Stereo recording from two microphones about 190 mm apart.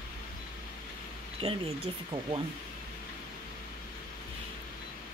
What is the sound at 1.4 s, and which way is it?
Speech, 30° right (ahead or behind).